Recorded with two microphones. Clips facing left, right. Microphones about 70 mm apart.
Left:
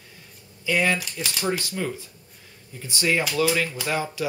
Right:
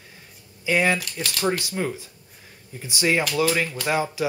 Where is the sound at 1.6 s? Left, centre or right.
Right.